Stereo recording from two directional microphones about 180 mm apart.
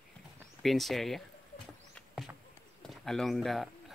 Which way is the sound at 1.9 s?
Centre (ahead or behind).